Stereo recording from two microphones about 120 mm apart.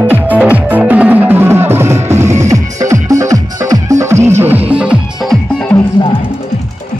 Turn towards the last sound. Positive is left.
turn(degrees=40)  # may be behind; listen again after turning